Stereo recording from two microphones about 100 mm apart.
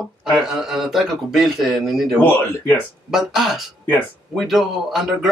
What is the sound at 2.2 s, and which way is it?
Speech, 20° left (ahead or behind).